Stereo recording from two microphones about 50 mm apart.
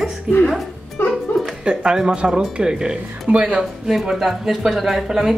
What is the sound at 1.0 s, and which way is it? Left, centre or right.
Music, left.